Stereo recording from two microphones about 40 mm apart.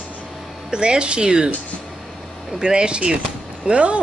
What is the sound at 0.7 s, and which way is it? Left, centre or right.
Speech, right.